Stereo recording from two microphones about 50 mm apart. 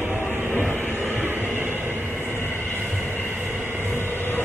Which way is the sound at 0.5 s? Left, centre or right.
Left.